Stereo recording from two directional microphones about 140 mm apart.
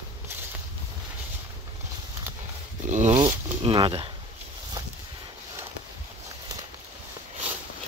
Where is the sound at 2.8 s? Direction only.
60° right (ahead or behind).